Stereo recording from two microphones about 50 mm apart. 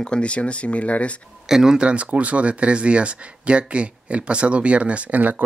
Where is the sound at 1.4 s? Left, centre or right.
Centre; by 5.4 s right.